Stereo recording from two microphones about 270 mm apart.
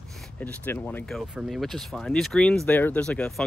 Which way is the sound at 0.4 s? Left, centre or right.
Centre.